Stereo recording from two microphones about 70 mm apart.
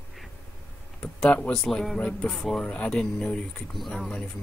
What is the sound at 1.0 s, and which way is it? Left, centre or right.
Speech, centre.